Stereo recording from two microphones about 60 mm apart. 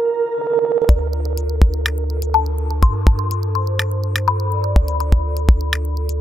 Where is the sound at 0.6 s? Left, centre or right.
Centre.